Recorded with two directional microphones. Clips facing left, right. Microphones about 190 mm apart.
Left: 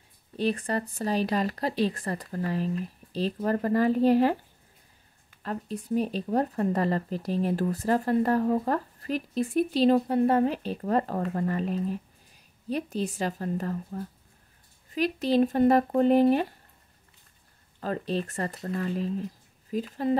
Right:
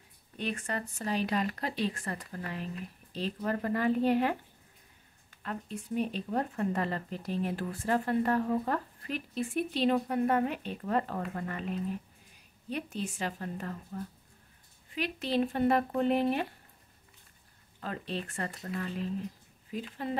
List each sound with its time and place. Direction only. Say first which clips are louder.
0.4 s speech: left 7 dB; 35° left (ahead or behind)
5.4 s speech: left 5 dB; 35° left (ahead or behind)
17.7 s speech: left 7 dB; 40° left (ahead or behind)